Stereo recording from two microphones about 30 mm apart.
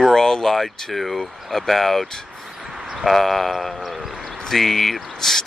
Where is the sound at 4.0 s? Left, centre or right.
Centre.